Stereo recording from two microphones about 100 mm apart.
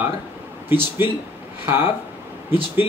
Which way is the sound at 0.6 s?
20° right (ahead or behind).